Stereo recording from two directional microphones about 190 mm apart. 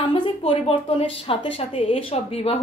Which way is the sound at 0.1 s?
25° left (ahead or behind).